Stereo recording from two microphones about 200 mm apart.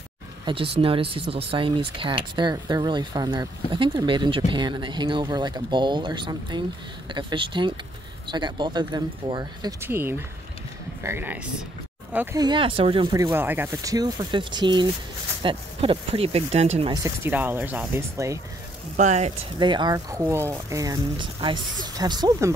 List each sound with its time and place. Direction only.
0.5 s speech: 25° right (ahead or behind); by 12.4 s 10° right (ahead or behind)
12.4 s speech: 25° right (ahead or behind)
16.9 s speech: 15° right (ahead or behind)
18.9 s speech: 35° right (ahead or behind)